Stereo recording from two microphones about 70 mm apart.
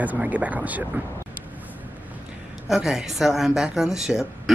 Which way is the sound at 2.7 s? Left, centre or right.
Centre.